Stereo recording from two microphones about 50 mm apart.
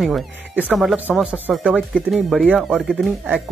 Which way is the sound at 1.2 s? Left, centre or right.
Right.